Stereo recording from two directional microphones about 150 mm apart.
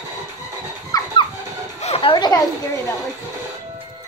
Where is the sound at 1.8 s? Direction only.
40° left (ahead or behind).